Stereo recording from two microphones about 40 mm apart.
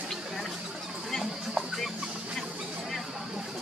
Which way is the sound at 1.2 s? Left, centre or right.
Centre.